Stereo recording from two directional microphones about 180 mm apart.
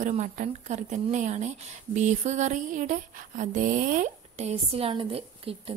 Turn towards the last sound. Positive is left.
turn(degrees=-30)  # may be behind; listen again after turning